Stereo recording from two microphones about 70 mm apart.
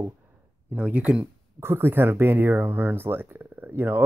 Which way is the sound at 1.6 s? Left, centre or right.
Right.